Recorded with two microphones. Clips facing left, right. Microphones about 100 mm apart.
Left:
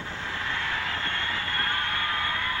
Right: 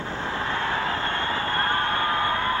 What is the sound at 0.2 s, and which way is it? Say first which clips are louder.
Vehicle: right 5 dB; 35° right (ahead or behind).